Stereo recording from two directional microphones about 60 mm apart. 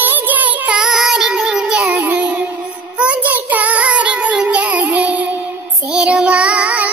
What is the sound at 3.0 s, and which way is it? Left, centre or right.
Child singing, right.